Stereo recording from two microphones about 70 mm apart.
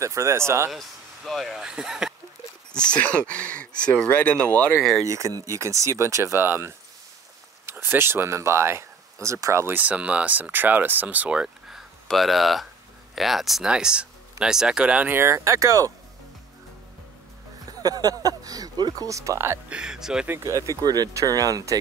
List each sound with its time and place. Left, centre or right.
0.0 s speech: right
0.7 s speech: centre
2.7 s speech: centre
5.0 s speech: right
6.4 s speech: right
9.8 s speech: centre
12.1 s speech: centre
15.0 s speech: right
17.6 s speech: right
19.0 s speech: right
19.7 s speech: centre
20.4 s speech: right
20.8 s speech: right
21.1 s speech: right